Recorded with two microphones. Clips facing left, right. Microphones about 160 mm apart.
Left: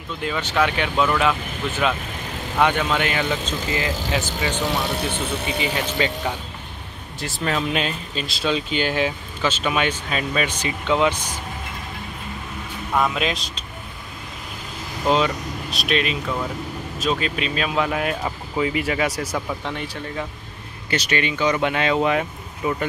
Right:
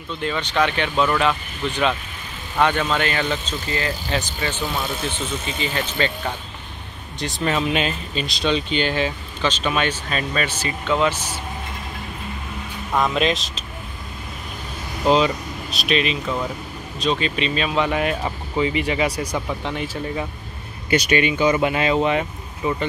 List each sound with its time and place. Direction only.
0.2 s speech: 10° left (ahead or behind)
2.6 s speech: 10° left (ahead or behind)
4.8 s speech: 65° left (ahead or behind)
5.6 s speech: 10° left (ahead or behind)
12.9 s speech: 5° left (ahead or behind)
15.0 s speech: centre (ahead or behind)
20.9 s speech: 10° right (ahead or behind)